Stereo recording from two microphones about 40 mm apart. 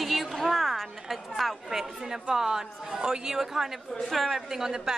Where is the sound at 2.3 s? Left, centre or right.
Centre.